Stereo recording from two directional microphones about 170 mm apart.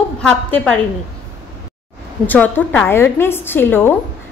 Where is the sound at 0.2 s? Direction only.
10° left (ahead or behind).